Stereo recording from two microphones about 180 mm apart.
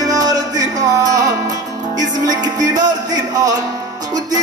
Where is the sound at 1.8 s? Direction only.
45° right (ahead or behind).